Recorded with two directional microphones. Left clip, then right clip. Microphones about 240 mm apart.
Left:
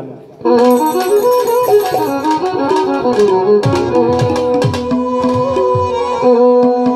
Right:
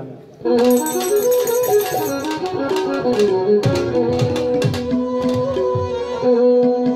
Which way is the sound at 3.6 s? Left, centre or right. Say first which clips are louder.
Left 5 dB; centre.